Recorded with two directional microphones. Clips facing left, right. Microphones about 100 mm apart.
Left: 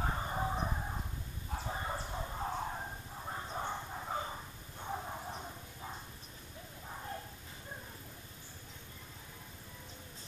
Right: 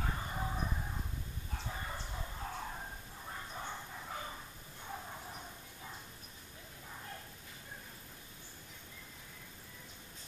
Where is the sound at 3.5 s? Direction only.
30° left (ahead or behind).